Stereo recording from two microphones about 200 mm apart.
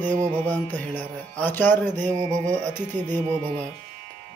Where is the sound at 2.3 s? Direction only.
40° right (ahead or behind).